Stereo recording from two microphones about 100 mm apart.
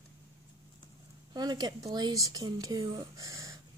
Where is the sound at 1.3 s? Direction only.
45° right (ahead or behind).